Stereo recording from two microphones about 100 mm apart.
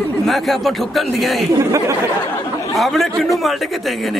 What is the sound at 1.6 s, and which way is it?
Speech, 30° right (ahead or behind).